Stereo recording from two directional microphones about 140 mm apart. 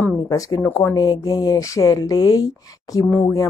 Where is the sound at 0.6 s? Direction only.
15° left (ahead or behind).